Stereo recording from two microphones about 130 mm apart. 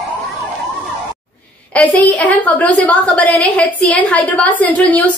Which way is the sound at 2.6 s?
10° left (ahead or behind).